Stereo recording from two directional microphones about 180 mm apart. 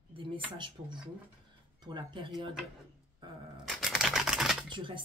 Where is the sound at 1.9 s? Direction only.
25° right (ahead or behind).